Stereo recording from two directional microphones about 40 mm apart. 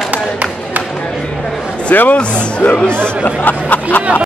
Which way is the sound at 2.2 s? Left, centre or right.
Left.